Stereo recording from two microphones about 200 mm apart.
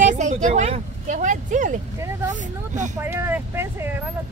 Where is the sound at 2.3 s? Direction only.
35° right (ahead or behind).